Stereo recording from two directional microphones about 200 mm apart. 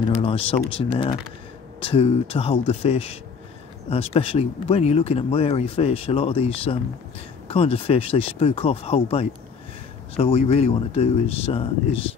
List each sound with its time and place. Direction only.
0.2 s speech: 30° left (ahead or behind)